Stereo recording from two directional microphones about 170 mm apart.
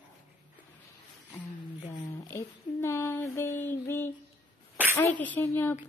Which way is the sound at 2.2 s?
15° left (ahead or behind).